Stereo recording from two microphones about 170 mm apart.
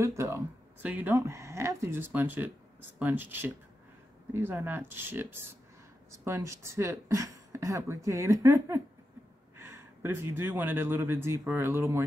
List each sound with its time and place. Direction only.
0.0 s speech: 15° right (ahead or behind)